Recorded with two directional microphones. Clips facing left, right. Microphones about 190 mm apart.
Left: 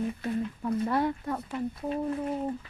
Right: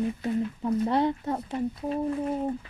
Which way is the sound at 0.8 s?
25° right (ahead or behind).